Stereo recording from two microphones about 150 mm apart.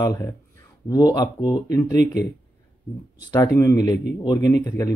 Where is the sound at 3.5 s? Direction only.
20° left (ahead or behind).